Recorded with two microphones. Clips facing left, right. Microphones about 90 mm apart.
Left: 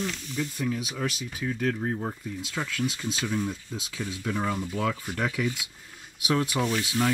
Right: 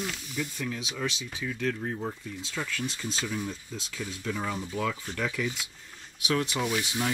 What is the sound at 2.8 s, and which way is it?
Speech, 5° left (ahead or behind).